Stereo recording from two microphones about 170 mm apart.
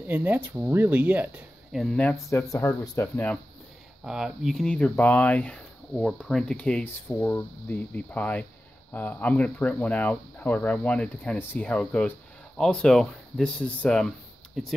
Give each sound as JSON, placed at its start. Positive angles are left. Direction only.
{"t": 0.0, "sound": "speech", "side_deg": -10}
{"t": 2.2, "sound": "speech", "side_deg": 15}
{"t": 4.0, "sound": "speech", "side_deg": -5}